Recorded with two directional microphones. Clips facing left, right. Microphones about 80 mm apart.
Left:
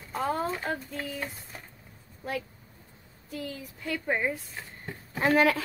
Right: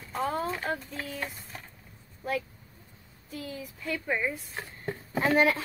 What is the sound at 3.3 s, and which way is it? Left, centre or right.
Speech, left.